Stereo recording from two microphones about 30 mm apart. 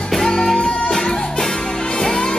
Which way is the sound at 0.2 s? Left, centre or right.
Centre.